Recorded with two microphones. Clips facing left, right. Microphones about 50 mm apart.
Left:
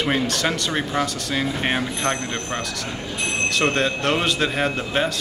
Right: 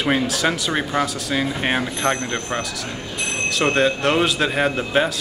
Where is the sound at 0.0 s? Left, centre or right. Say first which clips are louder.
Right 2 dB; centre.